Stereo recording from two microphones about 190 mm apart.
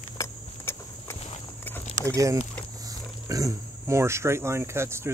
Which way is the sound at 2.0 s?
15° right (ahead or behind).